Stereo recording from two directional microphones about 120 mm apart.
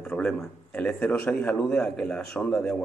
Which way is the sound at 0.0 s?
10° left (ahead or behind).